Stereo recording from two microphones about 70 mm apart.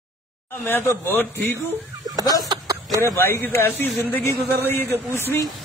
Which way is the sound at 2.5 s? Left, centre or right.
Right.